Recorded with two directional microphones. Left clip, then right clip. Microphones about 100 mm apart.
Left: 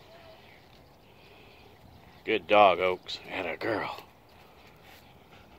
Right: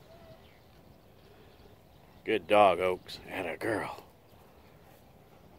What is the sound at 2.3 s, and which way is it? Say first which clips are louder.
Speech: left 2 dB; 20° right (ahead or behind).